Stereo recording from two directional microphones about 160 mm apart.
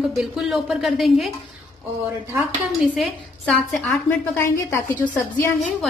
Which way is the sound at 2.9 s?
Centre (ahead or behind).